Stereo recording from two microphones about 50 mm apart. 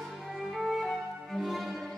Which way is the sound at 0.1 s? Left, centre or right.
Centre.